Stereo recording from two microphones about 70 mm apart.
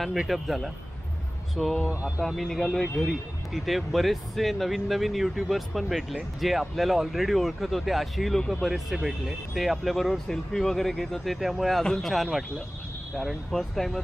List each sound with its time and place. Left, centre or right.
0.3 s speech: centre
1.9 s speech: centre
2.2 s speech: centre